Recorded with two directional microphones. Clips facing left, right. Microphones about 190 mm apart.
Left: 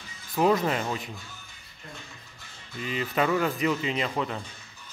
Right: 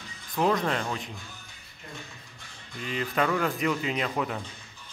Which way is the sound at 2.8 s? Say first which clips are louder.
Left 1 dB; 5° left (ahead or behind).